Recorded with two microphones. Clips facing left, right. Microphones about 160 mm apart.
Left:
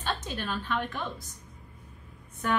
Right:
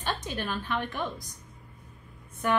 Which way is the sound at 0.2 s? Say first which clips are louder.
Right 1 dB; 15° right (ahead or behind).